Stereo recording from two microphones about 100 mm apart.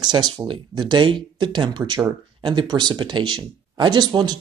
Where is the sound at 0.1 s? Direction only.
45° right (ahead or behind).